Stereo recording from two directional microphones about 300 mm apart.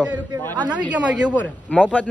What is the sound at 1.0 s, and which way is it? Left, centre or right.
A man's voice, centre.